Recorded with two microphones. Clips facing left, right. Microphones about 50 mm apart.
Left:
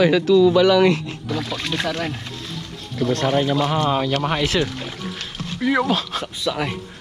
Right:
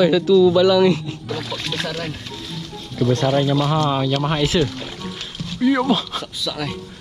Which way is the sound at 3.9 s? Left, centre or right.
Left.